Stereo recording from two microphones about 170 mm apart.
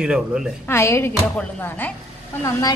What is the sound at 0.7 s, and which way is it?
A woman's voice, 15° left (ahead or behind).